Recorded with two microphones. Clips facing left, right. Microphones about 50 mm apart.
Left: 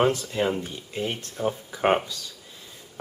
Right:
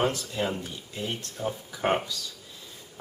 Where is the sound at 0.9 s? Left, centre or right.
Left.